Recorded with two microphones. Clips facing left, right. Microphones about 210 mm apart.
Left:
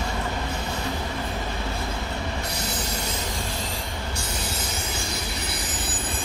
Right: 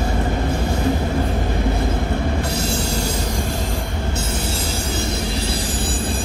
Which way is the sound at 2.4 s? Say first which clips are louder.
Right 8 dB; 30° right (ahead or behind).